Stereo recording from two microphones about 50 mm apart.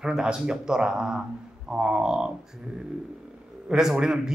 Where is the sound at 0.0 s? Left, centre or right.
Centre.